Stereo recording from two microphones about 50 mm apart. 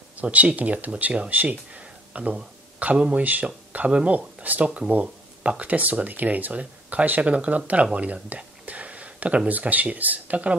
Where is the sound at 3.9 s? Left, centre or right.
Centre.